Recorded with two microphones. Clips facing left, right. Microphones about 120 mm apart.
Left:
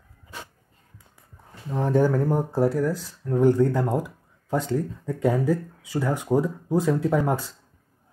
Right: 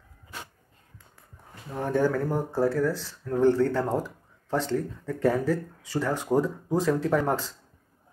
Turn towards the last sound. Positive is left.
turn(degrees=15)  # may be behind; listen again after turning